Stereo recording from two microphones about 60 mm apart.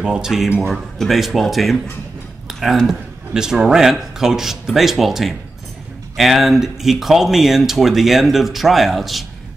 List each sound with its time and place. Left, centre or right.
0.0 s speech: centre
2.9 s speech: centre